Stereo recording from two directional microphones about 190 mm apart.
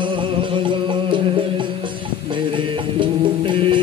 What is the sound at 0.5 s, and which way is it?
Music, 25° right (ahead or behind).